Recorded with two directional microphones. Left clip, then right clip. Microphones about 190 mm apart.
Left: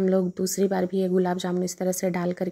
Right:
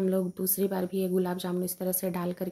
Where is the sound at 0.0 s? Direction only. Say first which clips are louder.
Left 5 dB; 30° left (ahead or behind).